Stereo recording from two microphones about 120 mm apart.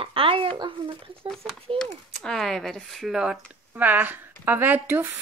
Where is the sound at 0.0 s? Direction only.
50° right (ahead or behind).